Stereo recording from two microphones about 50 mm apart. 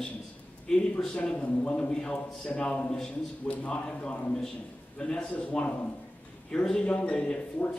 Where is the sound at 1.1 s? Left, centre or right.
Left.